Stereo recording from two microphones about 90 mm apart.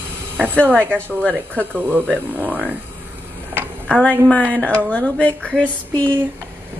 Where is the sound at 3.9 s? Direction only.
15° left (ahead or behind).